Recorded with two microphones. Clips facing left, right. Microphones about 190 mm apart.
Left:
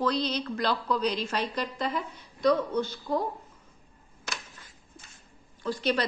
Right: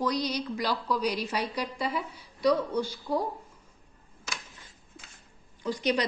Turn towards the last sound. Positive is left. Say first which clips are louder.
# even
turn(degrees=-15)  # may be behind; listen again after turning